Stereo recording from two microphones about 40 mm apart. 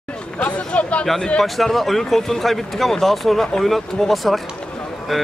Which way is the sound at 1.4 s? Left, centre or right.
Centre.